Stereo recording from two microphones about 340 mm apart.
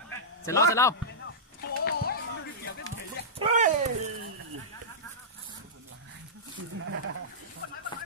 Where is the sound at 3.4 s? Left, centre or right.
Right.